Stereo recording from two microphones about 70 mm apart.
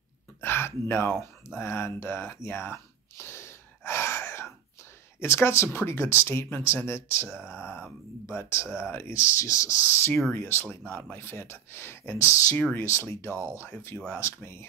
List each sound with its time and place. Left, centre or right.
0.4 s a sound: left
5.2 s speech: left
8.3 s speech: left
11.1 s speech: left
13.3 s speech: right
13.6 s speech: left